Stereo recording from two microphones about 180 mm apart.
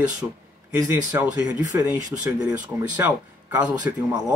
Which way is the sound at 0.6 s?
10° right (ahead or behind).